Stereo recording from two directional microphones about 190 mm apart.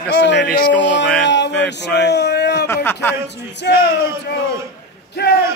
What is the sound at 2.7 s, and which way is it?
Speech, 10° left (ahead or behind).